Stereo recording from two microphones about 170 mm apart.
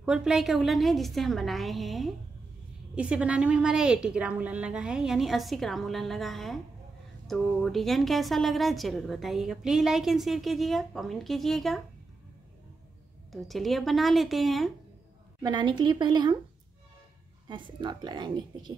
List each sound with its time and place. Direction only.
0.0 s a woman's voice: 5° right (ahead or behind)
13.3 s a woman's voice: centre (ahead or behind)
15.4 s speech: 25° right (ahead or behind)
17.5 s speech: 30° right (ahead or behind)